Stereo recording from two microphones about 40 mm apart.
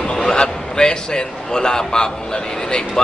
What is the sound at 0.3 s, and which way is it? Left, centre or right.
A man's voice, centre.